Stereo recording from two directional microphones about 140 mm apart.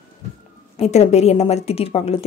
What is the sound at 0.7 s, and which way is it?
Speech, 50° left (ahead or behind).